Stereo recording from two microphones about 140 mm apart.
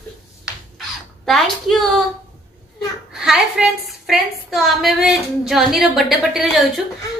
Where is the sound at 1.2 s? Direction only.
Centre (ahead or behind).